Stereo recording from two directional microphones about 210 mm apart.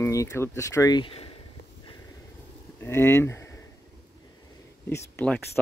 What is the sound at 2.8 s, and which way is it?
Speech, 10° left (ahead or behind).